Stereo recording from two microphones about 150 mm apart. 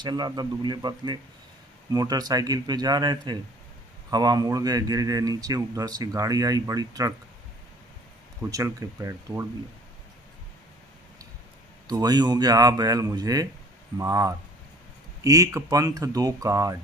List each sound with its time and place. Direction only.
0.0 s a man's voice: 30° right (ahead or behind)
8.4 s a man's voice: 20° right (ahead or behind)
11.9 s a man's voice: 25° right (ahead or behind)